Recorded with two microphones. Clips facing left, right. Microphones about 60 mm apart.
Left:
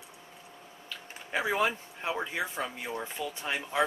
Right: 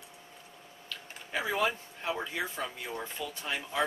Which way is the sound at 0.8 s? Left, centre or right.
Centre.